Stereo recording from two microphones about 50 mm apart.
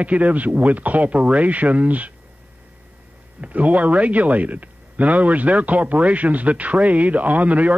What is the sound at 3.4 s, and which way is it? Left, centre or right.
Speech, right.